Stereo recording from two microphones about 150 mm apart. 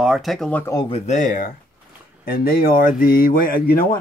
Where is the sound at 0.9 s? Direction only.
50° left (ahead or behind).